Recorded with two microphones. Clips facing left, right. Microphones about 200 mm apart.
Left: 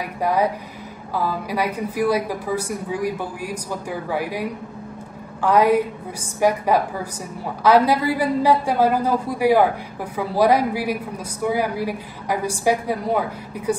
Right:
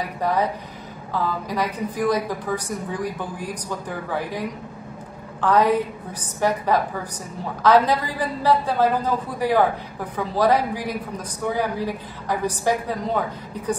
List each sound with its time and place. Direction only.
0.2 s a woman's voice: 10° left (ahead or behind)